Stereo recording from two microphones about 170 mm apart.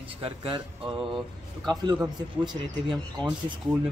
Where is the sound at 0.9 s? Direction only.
Centre (ahead or behind).